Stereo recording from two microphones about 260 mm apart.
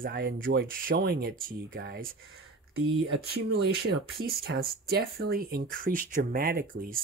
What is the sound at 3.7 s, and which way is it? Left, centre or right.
Speech, right.